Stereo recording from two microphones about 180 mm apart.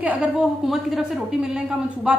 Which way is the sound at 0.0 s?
5° right (ahead or behind).